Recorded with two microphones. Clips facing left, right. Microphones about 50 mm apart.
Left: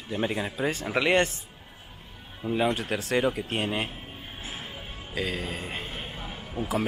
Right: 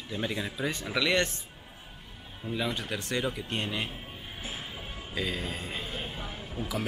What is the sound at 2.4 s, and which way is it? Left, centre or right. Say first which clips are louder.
Speech: left 6 dB; left.